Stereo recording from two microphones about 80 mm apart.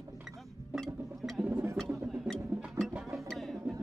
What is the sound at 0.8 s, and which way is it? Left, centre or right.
Music, centre.